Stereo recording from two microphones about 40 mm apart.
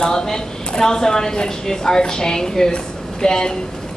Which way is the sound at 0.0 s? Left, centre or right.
Centre.